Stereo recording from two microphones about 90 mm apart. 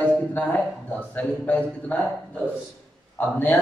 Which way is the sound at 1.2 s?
20° left (ahead or behind).